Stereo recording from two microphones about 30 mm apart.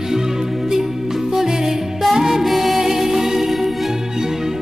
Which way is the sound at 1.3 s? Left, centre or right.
Centre.